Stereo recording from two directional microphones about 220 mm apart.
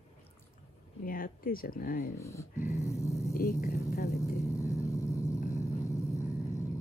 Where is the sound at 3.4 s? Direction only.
45° left (ahead or behind).